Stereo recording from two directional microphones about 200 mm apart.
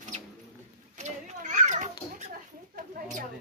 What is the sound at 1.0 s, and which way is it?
Children playing, 40° right (ahead or behind).